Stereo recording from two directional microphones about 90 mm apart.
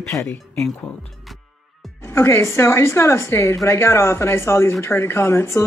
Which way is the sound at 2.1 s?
30° left (ahead or behind).